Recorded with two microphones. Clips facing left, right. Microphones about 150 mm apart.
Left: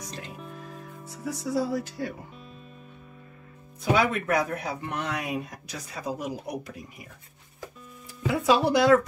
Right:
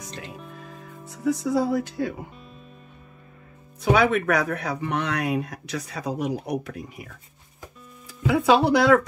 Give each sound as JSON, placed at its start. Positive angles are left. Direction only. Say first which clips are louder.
{"t": 1.1, "sound": "music", "louder": "right 6 dB", "side_deg": -55}
{"t": 3.9, "sound": "speech", "louder": "right 4 dB", "side_deg": -70}
{"t": 8.3, "sound": "speech", "louder": "right 4 dB", "side_deg": -65}